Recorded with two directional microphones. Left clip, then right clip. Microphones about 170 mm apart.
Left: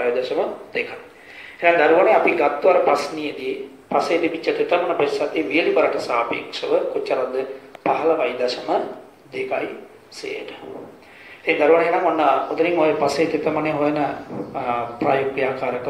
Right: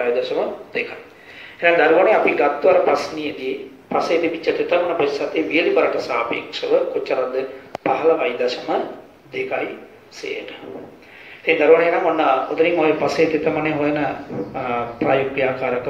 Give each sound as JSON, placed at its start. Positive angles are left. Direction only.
{"t": 0.0, "sound": "speech", "side_deg": -45}
{"t": 11.4, "sound": "speech", "side_deg": -45}